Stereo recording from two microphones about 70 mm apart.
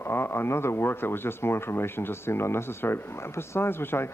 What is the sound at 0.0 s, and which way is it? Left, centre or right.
Speech, left.